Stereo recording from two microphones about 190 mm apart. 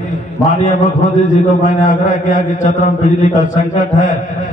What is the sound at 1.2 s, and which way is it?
A man's voice, 40° left (ahead or behind).